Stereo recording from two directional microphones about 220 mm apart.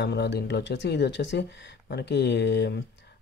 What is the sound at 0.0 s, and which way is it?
Speech, 50° left (ahead or behind).